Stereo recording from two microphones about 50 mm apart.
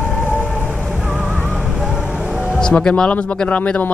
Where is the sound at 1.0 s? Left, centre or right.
Centre.